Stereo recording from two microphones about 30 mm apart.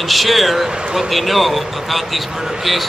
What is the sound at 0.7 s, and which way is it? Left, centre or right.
Speech, right.